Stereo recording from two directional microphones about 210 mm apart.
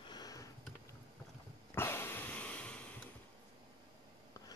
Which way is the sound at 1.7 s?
10° left (ahead or behind).